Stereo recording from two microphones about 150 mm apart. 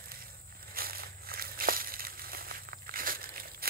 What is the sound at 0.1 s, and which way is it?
Crushing, 80° right.